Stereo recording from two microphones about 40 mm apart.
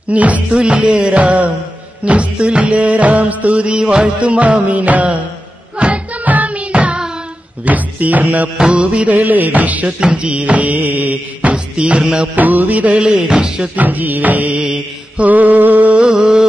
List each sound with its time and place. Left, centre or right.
0.1 s music: right
0.5 s music: right
8.7 s music: right
9.9 s music: right
11.5 s music: right
12.4 s music: right
13.0 s music: right
13.7 s music: right
16.0 s a sound: right